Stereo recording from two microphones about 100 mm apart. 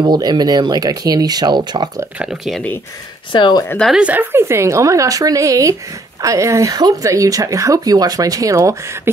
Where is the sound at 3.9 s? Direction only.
15° right (ahead or behind); by 9.1 s 30° right (ahead or behind).